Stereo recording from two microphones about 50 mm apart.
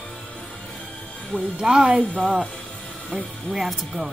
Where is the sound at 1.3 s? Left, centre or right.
Left.